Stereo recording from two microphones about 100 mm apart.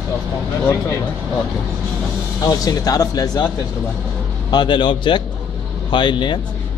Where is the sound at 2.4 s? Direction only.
35° left (ahead or behind).